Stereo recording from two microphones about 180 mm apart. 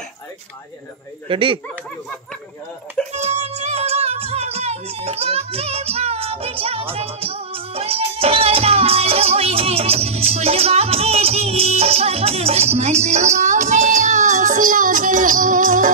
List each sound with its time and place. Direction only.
1.3 s speech: 30° right (ahead or behind)
3.1 s music: 35° right (ahead or behind)